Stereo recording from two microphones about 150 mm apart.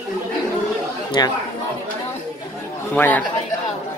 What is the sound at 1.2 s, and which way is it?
Speech, 25° left (ahead or behind).